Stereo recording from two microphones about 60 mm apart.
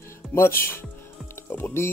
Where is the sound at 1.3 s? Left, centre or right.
Left.